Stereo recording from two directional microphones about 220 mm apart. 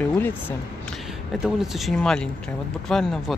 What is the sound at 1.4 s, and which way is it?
Speech, centre (ahead or behind).